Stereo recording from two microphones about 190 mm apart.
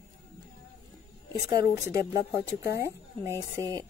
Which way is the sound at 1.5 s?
15° right (ahead or behind).